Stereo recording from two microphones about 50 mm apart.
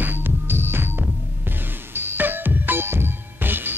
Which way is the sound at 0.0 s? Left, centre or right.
Right.